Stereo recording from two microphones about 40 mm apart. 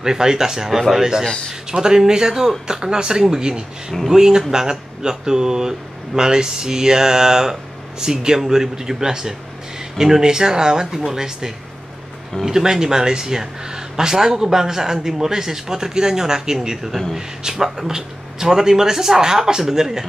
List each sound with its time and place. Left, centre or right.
0.0 s speech: centre